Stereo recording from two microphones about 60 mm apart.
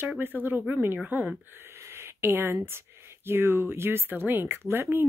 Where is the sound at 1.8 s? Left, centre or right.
Right.